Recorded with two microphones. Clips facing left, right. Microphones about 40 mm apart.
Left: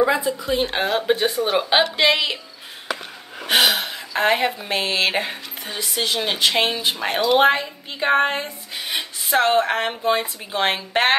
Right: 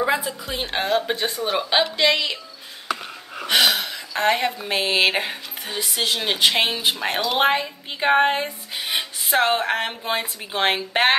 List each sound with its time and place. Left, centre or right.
0.0 s speech: centre
3.4 s speech: centre
4.6 s speech: centre